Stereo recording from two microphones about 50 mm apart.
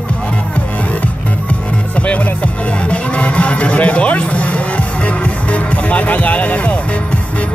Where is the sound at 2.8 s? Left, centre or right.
Left.